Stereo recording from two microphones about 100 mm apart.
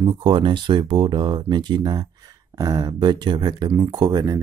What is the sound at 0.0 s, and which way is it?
Speech, 50° right (ahead or behind).